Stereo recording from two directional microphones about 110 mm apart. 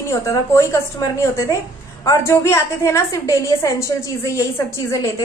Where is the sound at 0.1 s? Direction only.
25° left (ahead or behind).